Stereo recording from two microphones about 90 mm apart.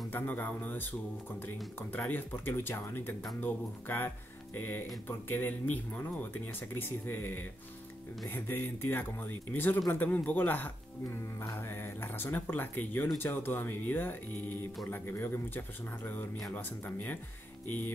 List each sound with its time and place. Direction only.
0.1 s speech: 20° left (ahead or behind)